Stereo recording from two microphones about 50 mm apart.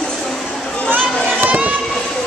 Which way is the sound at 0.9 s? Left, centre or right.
Right.